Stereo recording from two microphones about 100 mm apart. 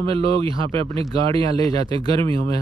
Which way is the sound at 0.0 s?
70° right (ahead or behind).